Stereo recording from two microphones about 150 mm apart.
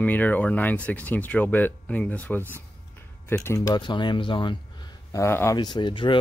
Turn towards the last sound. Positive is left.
turn(degrees=30)  # may be behind; listen again after turning